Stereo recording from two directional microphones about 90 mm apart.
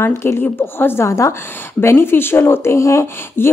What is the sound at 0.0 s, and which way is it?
Speech, 30° left (ahead or behind).